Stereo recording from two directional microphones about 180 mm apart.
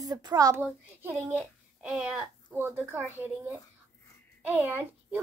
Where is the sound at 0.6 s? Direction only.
5° right (ahead or behind).